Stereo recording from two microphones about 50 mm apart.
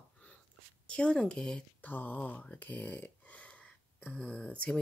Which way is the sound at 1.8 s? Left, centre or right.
Left.